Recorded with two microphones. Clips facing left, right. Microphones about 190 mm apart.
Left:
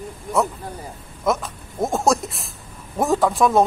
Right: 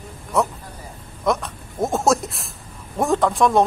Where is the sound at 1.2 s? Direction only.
Centre (ahead or behind).